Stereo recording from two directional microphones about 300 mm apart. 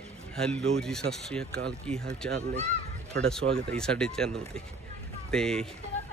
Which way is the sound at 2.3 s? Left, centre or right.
Right.